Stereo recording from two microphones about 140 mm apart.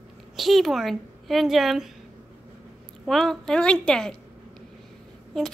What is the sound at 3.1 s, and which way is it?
A woman's voice, 5° left (ahead or behind).